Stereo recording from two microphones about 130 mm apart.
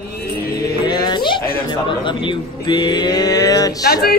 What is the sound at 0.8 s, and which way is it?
Music, 35° left (ahead or behind).